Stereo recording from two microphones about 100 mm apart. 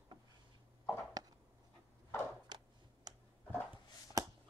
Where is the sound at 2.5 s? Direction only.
45° right (ahead or behind).